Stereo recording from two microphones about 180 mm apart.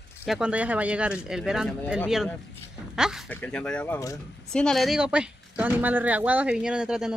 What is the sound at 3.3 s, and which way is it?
A woman's voice, 5° left (ahead or behind).